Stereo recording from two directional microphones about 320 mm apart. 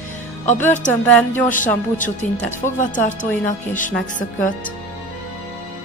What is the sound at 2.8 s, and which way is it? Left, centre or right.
A woman's voice, left.